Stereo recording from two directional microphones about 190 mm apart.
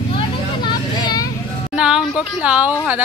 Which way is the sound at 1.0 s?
20° left (ahead or behind).